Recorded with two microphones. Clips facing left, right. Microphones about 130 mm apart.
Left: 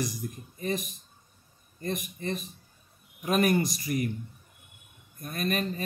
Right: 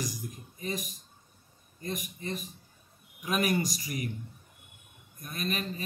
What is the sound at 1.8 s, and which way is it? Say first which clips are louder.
A man's voice: left 4 dB; 50° left (ahead or behind).